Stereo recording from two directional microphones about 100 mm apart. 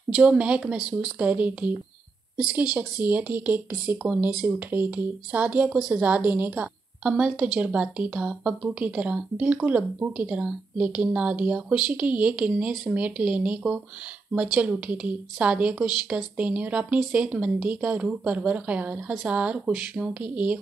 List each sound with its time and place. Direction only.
0.1 s a woman's voice: 10° right (ahead or behind)